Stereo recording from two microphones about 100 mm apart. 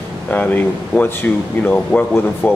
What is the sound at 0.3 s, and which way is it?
Speech, 15° left (ahead or behind).